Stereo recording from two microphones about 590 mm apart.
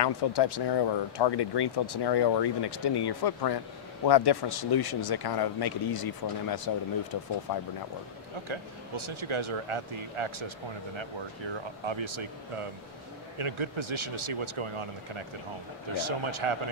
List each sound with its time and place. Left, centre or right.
0.0 s speech: left
8.5 s speech: right